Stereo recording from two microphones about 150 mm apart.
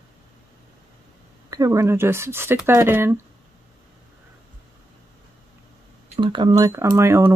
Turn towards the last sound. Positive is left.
turn(degrees=-20)  # may be behind; listen again after turning